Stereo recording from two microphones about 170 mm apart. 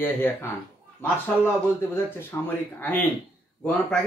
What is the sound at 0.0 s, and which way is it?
Speech, 10° left (ahead or behind).